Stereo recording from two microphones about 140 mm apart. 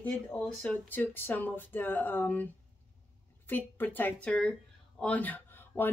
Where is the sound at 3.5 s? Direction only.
15° left (ahead or behind).